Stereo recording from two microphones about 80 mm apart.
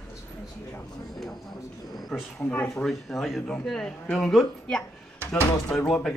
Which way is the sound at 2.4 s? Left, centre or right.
Centre.